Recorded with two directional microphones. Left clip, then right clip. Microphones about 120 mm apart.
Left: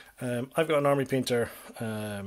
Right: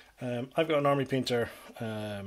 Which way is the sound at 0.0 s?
30° left (ahead or behind).